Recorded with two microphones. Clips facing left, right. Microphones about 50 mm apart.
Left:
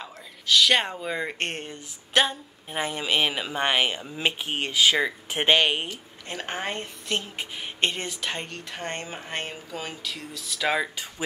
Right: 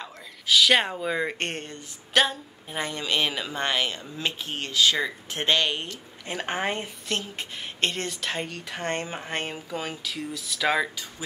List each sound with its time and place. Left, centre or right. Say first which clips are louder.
0.5 s speech: right 1 dB; centre
2.7 s speech: left 2 dB; centre
6.2 s a woman's voice: right 3 dB; centre
7.3 s speech: left 1 dB; centre